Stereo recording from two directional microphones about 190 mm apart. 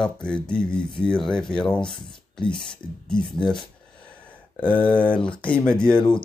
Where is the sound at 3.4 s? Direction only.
25° left (ahead or behind).